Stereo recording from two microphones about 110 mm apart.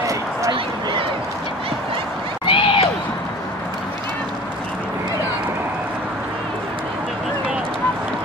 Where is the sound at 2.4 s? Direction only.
55° left (ahead or behind).